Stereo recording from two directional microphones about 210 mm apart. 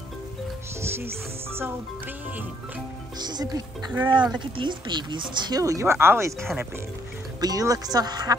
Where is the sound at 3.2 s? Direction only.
20° right (ahead or behind); by 6.7 s 5° right (ahead or behind).